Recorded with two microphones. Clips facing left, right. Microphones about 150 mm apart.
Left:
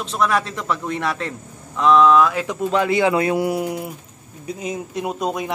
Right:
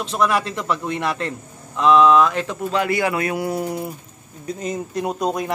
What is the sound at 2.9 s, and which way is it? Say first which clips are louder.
Speech: left 4 dB; 20° left (ahead or behind).